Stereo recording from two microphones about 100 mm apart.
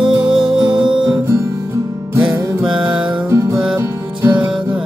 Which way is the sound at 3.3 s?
30° right (ahead or behind).